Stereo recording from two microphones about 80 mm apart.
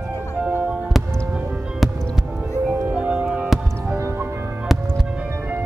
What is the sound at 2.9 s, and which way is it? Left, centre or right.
Music, centre.